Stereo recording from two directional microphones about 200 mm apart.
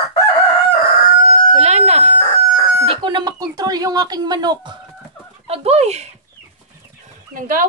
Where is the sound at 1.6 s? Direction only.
35° right (ahead or behind).